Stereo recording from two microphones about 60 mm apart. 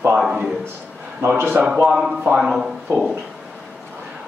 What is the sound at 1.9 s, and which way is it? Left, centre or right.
Speech, centre.